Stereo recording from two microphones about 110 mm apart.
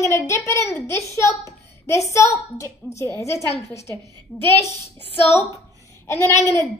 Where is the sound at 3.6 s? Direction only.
25° left (ahead or behind).